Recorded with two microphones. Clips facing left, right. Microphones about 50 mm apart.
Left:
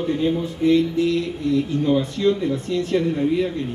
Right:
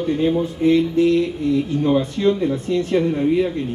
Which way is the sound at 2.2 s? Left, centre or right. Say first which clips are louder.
Right 2 dB; centre.